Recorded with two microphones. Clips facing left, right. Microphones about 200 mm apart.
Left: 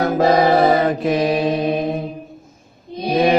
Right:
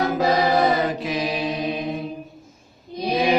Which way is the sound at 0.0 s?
50° left (ahead or behind).